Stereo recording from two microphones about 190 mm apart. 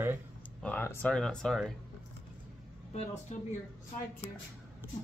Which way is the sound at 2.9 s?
35° left (ahead or behind).